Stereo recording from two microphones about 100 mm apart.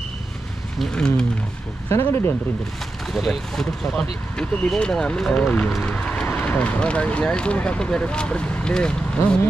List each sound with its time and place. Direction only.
0.7 s speech: 5° left (ahead or behind)
1.9 s speech: 25° left (ahead or behind)
3.1 s speech: 5° left (ahead or behind)